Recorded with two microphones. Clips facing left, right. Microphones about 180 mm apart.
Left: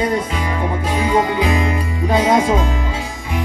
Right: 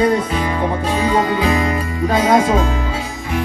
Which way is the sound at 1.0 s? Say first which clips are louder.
Even; 15° left (ahead or behind).